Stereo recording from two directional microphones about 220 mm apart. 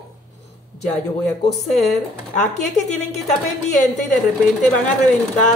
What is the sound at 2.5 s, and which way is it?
Speech, 30° left (ahead or behind).